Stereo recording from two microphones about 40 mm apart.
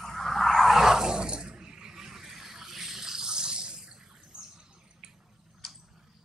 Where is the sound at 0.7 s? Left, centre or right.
Centre.